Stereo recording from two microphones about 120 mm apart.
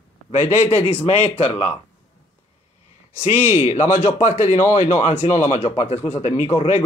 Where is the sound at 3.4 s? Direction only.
80° left.